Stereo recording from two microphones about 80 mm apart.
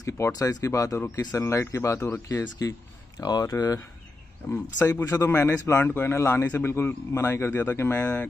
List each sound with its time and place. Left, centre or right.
0.0 s speech: left
3.2 s speech: left
4.5 s speech: left